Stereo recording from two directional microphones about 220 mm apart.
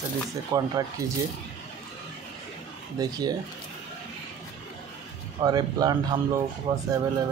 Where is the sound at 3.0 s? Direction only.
15° right (ahead or behind).